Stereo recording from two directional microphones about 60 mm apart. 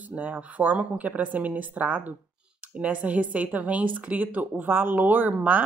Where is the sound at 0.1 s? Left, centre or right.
Right.